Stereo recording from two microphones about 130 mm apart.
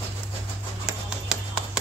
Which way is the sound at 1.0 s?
5° right (ahead or behind).